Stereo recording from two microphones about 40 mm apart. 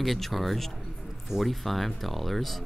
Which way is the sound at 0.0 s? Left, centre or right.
Centre.